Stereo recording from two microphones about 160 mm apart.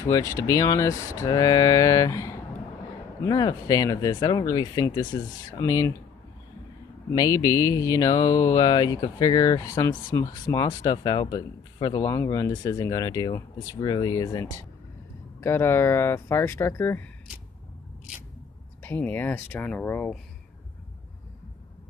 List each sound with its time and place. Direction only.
0.0 s speech: 20° left (ahead or behind)
7.1 s speech: 20° left (ahead or behind)
18.8 s speech: 10° left (ahead or behind)